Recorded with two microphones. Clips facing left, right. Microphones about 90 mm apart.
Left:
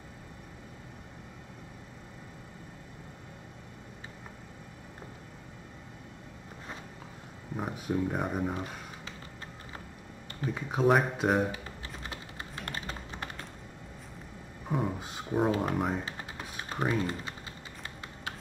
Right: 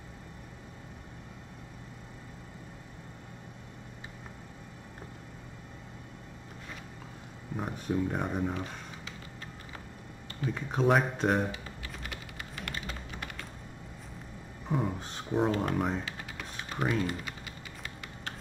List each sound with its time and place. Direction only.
7.5 s speech: 5° left (ahead or behind)
10.5 s speech: 10° left (ahead or behind)
11.5 s typing: 30° left (ahead or behind)
14.7 s speech: 5° left (ahead or behind)
16.1 s typing: 30° left (ahead or behind)
16.9 s speech: 30° left (ahead or behind)